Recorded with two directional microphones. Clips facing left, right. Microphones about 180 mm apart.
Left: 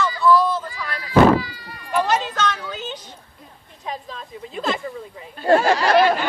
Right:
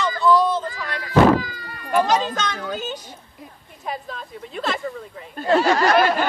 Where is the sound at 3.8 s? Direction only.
5° right (ahead or behind).